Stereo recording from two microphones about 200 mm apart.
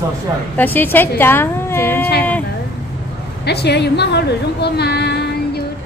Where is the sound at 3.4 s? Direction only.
55° left (ahead or behind).